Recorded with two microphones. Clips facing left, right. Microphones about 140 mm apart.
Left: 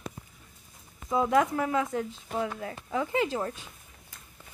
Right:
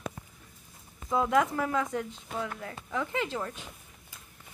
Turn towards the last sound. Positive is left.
turn(degrees=15)  # may be behind; listen again after turning